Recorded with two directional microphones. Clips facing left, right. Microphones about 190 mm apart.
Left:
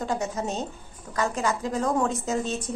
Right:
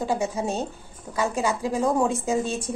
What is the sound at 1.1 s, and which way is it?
Speech, 20° right (ahead or behind).